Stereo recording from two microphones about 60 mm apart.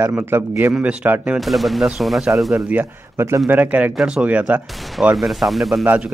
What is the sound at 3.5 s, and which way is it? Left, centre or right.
Speech, right.